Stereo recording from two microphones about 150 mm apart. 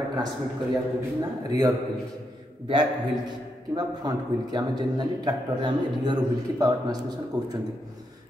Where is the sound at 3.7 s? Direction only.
25° right (ahead or behind).